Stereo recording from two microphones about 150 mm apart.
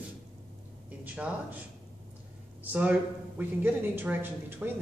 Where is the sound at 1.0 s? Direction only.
10° right (ahead or behind).